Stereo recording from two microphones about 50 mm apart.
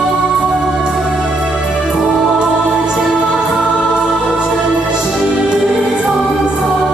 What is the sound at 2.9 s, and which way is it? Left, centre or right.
Music, centre.